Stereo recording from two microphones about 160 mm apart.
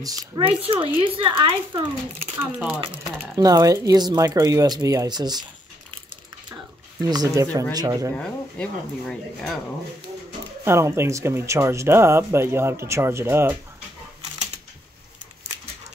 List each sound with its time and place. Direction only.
0.0 s speech: 20° right (ahead or behind)
0.5 s speech: 35° right (ahead or behind)
2.3 s speech: 10° right (ahead or behind)
3.3 s speech: 25° right (ahead or behind)
6.5 s a sound: 25° right (ahead or behind)
7.7 s speech: 20° right (ahead or behind)
8.2 s speech: 5° left (ahead or behind)
10.6 s speech: 15° right (ahead or behind)